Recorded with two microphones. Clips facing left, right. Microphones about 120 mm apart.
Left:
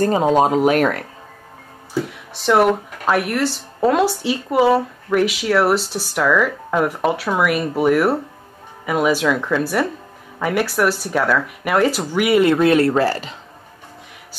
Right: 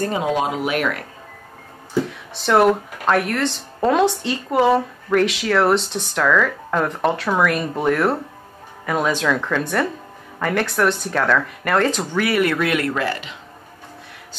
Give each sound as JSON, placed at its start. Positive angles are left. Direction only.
{"t": 0.0, "sound": "speech", "side_deg": 40}
{"t": 2.3, "sound": "speech", "side_deg": 0}
{"t": 12.1, "sound": "speech", "side_deg": 20}